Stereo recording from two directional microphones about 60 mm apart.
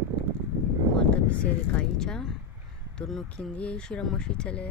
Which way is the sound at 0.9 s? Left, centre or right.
Centre.